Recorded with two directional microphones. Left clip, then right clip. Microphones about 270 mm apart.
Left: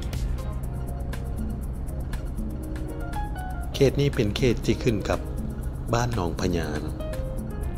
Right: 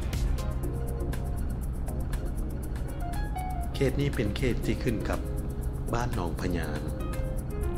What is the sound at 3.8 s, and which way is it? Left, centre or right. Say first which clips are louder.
Speech: left 7 dB; left.